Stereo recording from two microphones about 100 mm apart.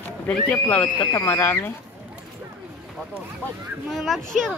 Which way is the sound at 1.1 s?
30° left (ahead or behind).